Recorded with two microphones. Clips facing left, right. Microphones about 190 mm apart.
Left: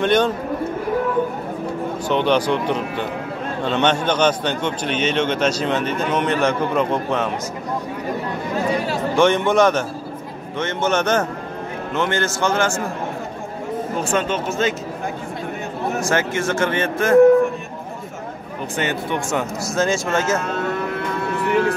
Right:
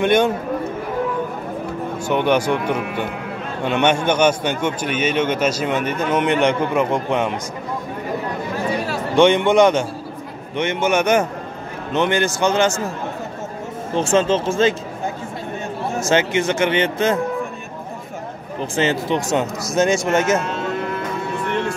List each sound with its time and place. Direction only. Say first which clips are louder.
0.0 s a man's voice: right 1 dB; 10° right (ahead or behind)
2.0 s a man's voice: right 1 dB; 10° right (ahead or behind)
9.1 s a man's voice: right 3 dB; 15° right (ahead or behind)
13.9 s speech: right 6 dB; 25° right (ahead or behind)
15.9 s speech: right 3 dB; 20° right (ahead or behind)
18.8 s speech: right 4 dB; 25° right (ahead or behind)